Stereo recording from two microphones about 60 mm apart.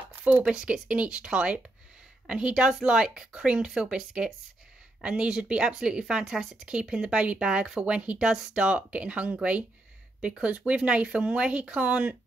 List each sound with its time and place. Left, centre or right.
0.1 s a woman's voice: right